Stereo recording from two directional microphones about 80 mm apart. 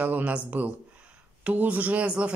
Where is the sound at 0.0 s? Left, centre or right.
Centre.